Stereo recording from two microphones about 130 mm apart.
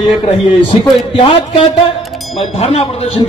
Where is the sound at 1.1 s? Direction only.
45° left (ahead or behind).